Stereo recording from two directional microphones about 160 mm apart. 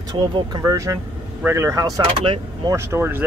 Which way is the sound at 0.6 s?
20° right (ahead or behind).